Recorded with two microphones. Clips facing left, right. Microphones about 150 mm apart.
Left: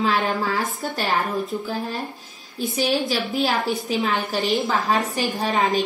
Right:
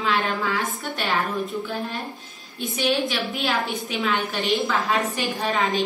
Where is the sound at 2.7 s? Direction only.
40° left (ahead or behind).